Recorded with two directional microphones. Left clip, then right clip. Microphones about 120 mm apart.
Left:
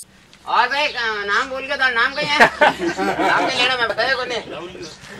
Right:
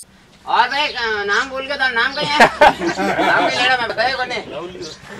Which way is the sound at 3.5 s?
5° left (ahead or behind).